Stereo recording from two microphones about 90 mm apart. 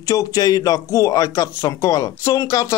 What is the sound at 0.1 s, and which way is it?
Speech, 45° left (ahead or behind).